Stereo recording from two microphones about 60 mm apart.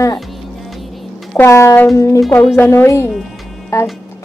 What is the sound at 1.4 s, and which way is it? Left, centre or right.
Speech, left.